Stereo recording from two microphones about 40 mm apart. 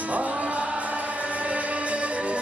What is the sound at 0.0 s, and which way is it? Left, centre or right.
Music, right.